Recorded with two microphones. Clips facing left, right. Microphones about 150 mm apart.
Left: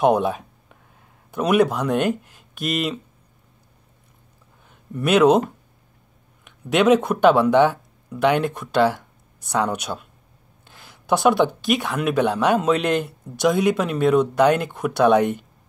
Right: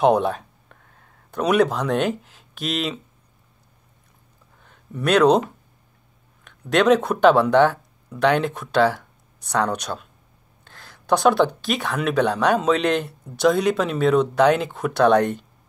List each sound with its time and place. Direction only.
0.0 s speech: centre (ahead or behind)
4.6 s speech: 5° left (ahead or behind)
6.4 s speech: 5° left (ahead or behind)